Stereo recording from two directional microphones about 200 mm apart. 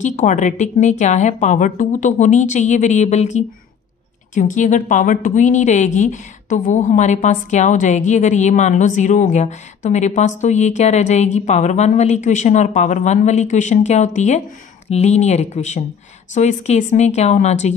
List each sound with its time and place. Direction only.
0.0 s a woman's voice: 40° left (ahead or behind)